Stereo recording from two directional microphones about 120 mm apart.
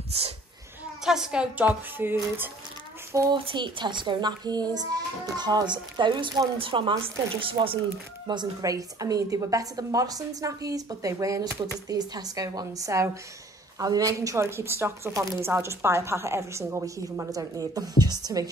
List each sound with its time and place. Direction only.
1.0 s a woman's voice: 5° right (ahead or behind)
3.1 s speech: 25° right (ahead or behind)
3.3 s a child's voice: 45° right (ahead or behind)
8.3 s a woman's voice: 35° right (ahead or behind)